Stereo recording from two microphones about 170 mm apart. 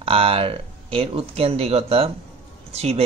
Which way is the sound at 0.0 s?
35° right (ahead or behind).